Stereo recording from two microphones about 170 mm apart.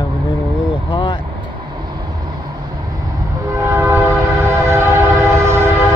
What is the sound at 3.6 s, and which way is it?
Train, 15° right (ahead or behind).